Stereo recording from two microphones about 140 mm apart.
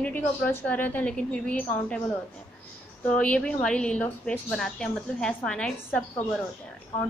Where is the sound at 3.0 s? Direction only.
10° left (ahead or behind).